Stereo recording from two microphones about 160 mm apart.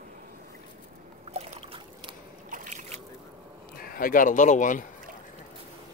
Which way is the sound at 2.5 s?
55° right (ahead or behind).